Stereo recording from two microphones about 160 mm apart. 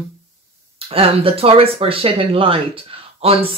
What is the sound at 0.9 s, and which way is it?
Speech, 35° right (ahead or behind).